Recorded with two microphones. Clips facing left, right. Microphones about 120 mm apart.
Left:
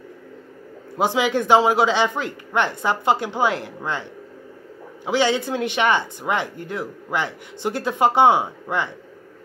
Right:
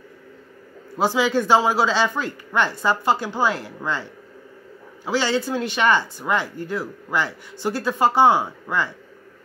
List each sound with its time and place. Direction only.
0.9 s speech: 20° left (ahead or behind)